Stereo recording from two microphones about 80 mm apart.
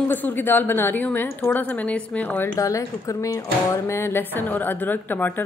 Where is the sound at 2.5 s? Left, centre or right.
Left.